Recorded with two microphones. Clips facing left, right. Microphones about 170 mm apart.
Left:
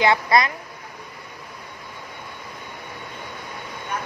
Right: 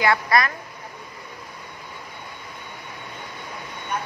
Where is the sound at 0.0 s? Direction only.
20° left (ahead or behind).